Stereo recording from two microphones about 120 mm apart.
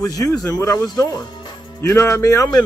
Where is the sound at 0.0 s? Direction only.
30° left (ahead or behind).